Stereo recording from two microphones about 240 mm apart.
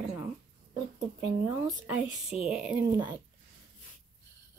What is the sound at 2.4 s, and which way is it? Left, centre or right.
Speech, centre.